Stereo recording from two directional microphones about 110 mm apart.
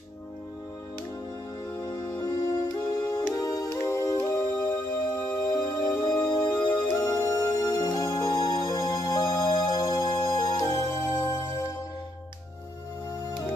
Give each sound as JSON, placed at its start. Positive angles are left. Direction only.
{"t": 1.8, "sound": "music", "side_deg": 35}